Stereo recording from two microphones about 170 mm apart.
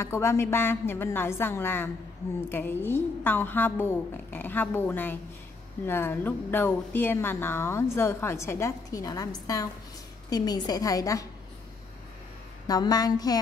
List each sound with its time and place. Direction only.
0.0 s a woman's voice: 15° left (ahead or behind)
12.6 s a woman's voice: 20° left (ahead or behind)